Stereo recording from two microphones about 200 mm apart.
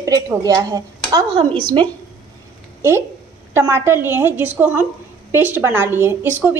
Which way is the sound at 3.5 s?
10° right (ahead or behind).